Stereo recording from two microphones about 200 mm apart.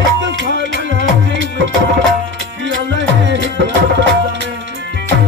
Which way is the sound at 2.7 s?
65° right (ahead or behind).